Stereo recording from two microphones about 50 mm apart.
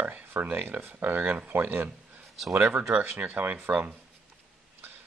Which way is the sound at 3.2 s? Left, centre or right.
Right.